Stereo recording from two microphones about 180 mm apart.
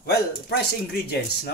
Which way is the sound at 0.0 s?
65° left (ahead or behind).